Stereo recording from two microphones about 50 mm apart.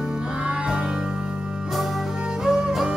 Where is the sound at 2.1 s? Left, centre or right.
Centre.